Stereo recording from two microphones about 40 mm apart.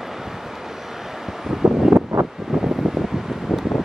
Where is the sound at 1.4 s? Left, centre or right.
Centre.